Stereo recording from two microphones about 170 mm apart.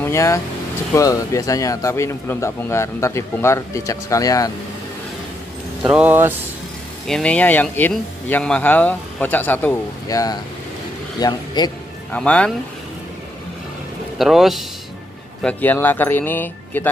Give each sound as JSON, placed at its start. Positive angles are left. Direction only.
{"t": 0.0, "sound": "a man's voice", "side_deg": 15}
{"t": 5.9, "sound": "speech", "side_deg": -10}
{"t": 7.1, "sound": "a man's voice", "side_deg": 5}
{"t": 12.1, "sound": "speech", "side_deg": 10}
{"t": 14.1, "sound": "speech", "side_deg": 0}
{"t": 15.4, "sound": "speech", "side_deg": 10}